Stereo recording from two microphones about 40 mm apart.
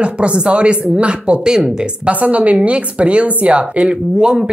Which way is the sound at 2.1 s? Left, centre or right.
Right.